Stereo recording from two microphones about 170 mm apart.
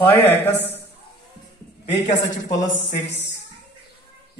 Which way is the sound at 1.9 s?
40° left (ahead or behind).